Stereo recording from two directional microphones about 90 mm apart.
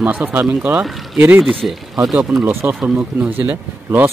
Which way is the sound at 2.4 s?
25° right (ahead or behind).